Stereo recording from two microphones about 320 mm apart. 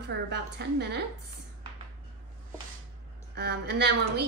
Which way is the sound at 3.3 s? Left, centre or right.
Right.